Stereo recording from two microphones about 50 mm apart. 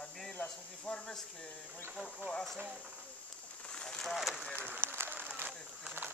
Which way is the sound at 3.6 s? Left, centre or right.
Centre.